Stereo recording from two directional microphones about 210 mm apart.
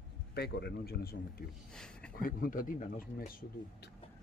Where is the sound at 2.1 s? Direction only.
40° left (ahead or behind).